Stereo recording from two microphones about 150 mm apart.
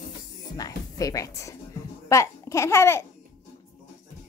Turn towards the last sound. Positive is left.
turn(degrees=15)  # may be behind; listen again after turning